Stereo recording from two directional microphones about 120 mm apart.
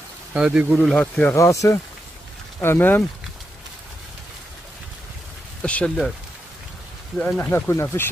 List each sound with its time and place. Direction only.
0.3 s speech: 10° right (ahead or behind); by 1.3 s 10° left (ahead or behind)
1.3 s speech: 25° left (ahead or behind)
5.6 s speech: 10° left (ahead or behind)
7.2 s speech: 10° left (ahead or behind)